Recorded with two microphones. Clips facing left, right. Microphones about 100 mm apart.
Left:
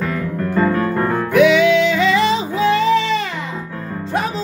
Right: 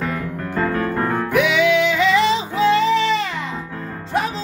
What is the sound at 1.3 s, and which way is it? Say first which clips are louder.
Music: left 5 dB; 5° right (ahead or behind).